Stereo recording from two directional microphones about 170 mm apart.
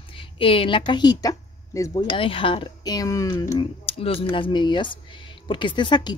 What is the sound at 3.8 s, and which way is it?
A woman's voice, 35° left (ahead or behind).